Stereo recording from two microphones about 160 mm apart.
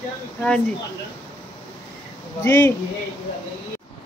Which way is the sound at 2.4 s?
15° left (ahead or behind).